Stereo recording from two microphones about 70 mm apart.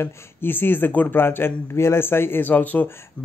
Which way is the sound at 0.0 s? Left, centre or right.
Left.